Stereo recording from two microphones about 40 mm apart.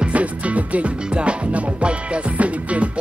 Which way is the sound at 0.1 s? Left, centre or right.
Right.